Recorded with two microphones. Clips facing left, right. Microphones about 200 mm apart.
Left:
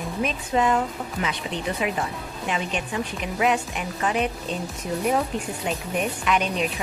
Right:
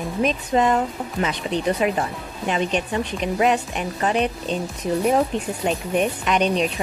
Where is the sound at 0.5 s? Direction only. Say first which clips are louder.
Right 3 dB; 35° right (ahead or behind).